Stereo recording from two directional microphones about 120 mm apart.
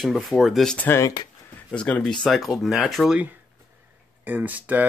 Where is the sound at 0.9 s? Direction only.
30° left (ahead or behind).